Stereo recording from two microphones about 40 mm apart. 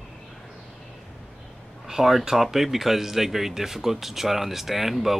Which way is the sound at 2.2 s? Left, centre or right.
Centre.